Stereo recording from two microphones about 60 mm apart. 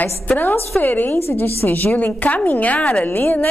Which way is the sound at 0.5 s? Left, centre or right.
Left.